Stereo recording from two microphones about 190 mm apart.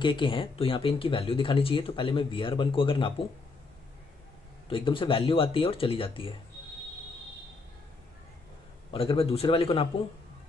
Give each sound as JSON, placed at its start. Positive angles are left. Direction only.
{"t": 0.0, "sound": "speech", "side_deg": 25}
{"t": 4.6, "sound": "speech", "side_deg": 25}
{"t": 8.9, "sound": "a man's voice", "side_deg": 30}